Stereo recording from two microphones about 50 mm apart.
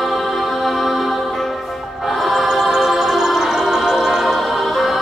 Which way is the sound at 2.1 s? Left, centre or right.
Centre.